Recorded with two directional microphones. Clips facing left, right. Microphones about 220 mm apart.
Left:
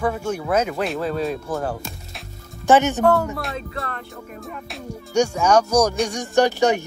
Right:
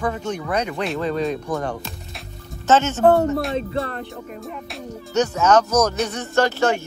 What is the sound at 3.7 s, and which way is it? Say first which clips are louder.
Speech: right 6 dB; 30° right (ahead or behind).